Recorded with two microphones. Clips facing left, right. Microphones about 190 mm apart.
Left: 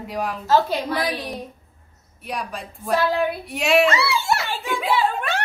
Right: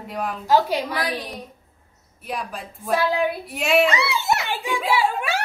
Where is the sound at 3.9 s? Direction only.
20° right (ahead or behind).